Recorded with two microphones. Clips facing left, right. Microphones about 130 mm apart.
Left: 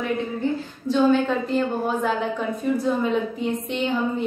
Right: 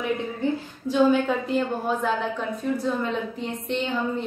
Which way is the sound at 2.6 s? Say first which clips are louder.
Left 4 dB; 5° left (ahead or behind).